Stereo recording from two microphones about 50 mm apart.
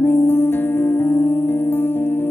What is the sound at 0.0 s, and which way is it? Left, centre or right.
Music, left.